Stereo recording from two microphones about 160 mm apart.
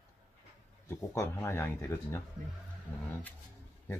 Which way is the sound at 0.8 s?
15° left (ahead or behind).